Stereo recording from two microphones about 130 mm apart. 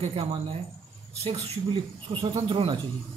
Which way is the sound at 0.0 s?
50° right (ahead or behind).